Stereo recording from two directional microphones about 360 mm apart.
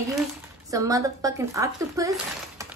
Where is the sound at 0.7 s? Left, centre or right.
Centre.